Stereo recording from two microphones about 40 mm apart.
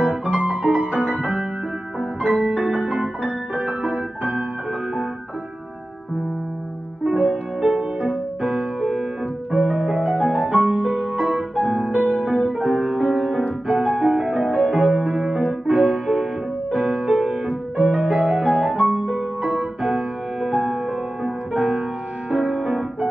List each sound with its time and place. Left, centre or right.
0.0 s music: right
7.2 s music: right
15.1 s keyboard: right
16.7 s music: right